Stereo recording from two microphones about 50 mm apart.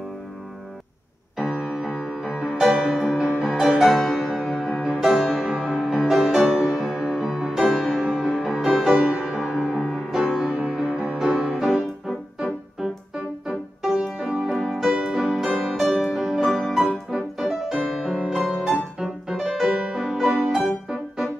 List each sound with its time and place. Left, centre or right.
1.5 s music: centre
7.6 s music: centre
8.0 s music: centre
8.9 s music: centre
9.8 s music: centre
10.5 s music: centre
12.4 s music: centre
19.7 s music: centre